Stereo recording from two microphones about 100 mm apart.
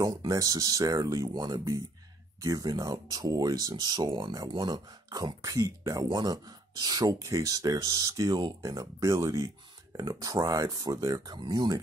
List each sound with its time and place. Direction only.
0.0 s speech: 40° right (ahead or behind)
6.0 s speech: 45° right (ahead or behind)